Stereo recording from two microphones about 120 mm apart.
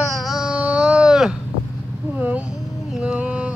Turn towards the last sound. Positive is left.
turn(degrees=-10)  # may be behind; listen again after turning